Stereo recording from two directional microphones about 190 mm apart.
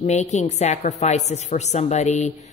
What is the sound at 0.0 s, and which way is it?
A woman's voice, 35° left (ahead or behind).